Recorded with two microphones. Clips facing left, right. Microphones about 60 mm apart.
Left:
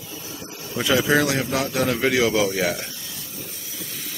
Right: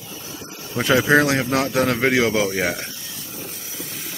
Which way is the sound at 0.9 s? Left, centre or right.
Right.